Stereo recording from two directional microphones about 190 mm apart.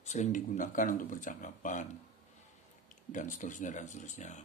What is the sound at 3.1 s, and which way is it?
Speech, 40° left (ahead or behind).